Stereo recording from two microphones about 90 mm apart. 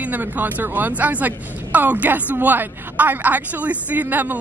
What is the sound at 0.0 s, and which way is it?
Speech, 20° right (ahead or behind).